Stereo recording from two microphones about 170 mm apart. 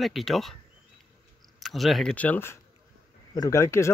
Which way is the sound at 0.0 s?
Centre (ahead or behind).